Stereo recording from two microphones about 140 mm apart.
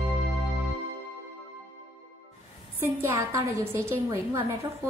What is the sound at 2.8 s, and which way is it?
A woman's voice, 20° right (ahead or behind).